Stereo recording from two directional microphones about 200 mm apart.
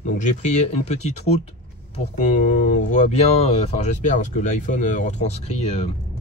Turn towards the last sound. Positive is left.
turn(degrees=30)  # may be behind; listen again after turning